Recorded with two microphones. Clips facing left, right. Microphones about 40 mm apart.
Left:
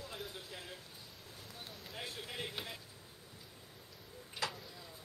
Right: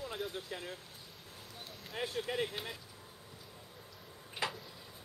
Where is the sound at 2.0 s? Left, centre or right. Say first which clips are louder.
Right 9 dB; right.